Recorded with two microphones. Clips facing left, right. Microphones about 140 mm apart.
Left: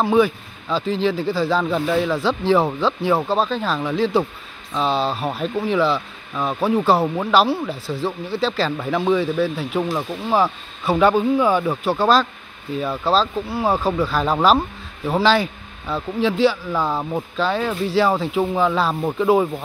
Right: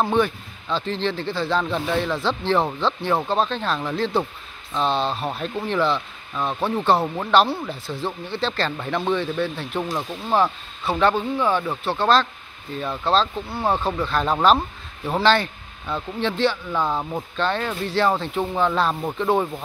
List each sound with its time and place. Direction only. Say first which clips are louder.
0.0 s speech: left 4 dB; 5° left (ahead or behind)
7.7 s speech: left 4 dB; 35° left (ahead or behind)
8.0 s speech: left 4 dB; 5° left (ahead or behind)